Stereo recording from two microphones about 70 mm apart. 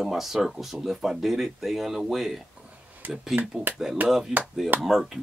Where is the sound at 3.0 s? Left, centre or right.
Right.